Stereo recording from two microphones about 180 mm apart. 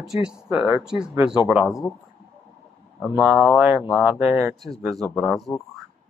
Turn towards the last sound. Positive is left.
turn(degrees=0)  # may be behind; listen again after turning